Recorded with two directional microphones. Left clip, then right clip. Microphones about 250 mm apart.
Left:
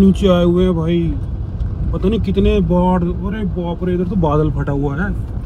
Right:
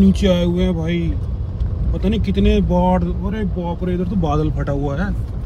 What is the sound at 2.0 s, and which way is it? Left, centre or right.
Speech, centre.